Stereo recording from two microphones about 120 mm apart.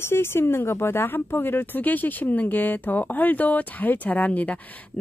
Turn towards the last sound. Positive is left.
turn(degrees=15)  # may be behind; listen again after turning